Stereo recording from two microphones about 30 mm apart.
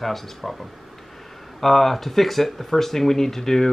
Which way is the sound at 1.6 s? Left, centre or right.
Centre.